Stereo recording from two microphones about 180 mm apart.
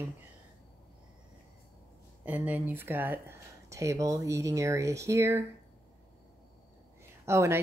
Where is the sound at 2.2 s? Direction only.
10° right (ahead or behind).